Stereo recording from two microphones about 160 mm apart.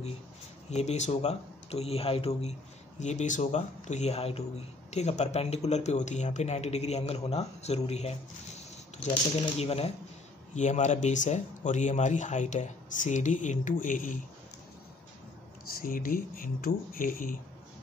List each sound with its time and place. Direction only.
0.7 s speech: 45° left (ahead or behind)
3.0 s speech: 45° left (ahead or behind)
15.8 s speech: 60° left (ahead or behind)